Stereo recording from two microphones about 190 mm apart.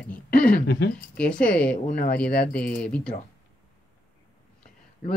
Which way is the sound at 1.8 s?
45° left (ahead or behind).